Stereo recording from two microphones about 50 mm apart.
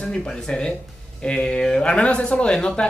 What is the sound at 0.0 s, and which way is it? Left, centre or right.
Speech, centre.